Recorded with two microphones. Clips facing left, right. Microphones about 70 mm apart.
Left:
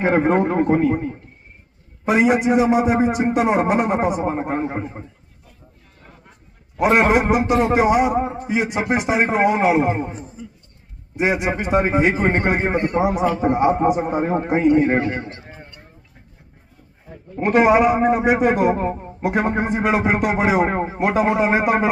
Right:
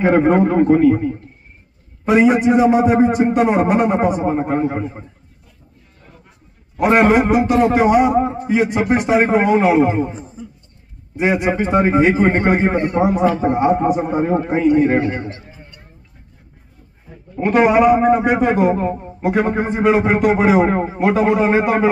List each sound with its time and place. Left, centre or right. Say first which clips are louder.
0.0 s a man's voice: right 4 dB; centre
0.7 s a man's voice: right 5 dB; left
2.0 s a man's voice: right 3 dB; centre
6.8 s a man's voice: right 3 dB; centre
9.7 s a man's voice: right 3 dB; left
11.1 s a man's voice: right 3 dB; centre
13.5 s a man's voice: right 1 dB; centre
17.4 s a man's voice: right 2 dB; centre